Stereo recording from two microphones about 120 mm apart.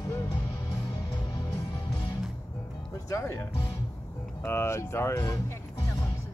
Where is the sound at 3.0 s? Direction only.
25° left (ahead or behind).